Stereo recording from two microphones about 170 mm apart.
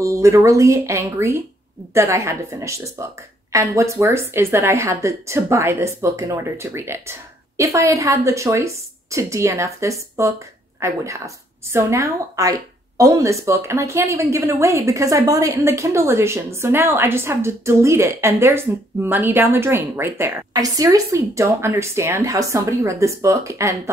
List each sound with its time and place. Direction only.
0.0 s a woman's voice: 15° right (ahead or behind)